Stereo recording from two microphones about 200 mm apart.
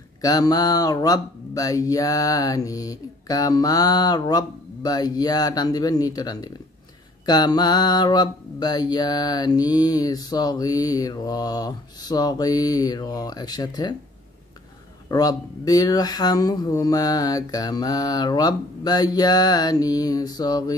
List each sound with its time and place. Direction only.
0.2 s mantra: 20° left (ahead or behind)
15.0 s mantra: 20° left (ahead or behind)